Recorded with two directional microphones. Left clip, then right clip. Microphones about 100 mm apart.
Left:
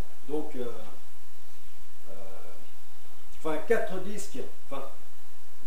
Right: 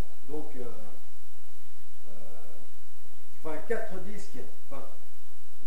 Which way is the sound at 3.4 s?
15° left (ahead or behind).